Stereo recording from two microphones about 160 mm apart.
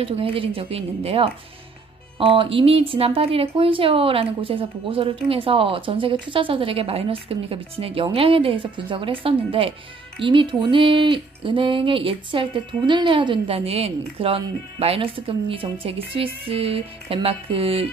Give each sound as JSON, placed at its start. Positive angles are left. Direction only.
{"t": 0.0, "sound": "speech", "side_deg": -35}